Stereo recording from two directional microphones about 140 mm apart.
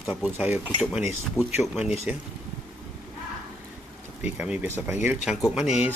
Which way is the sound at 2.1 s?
10° right (ahead or behind).